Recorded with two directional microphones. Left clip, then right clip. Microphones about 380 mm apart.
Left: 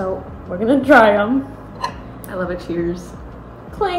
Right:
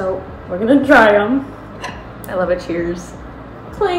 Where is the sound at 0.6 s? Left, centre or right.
Centre.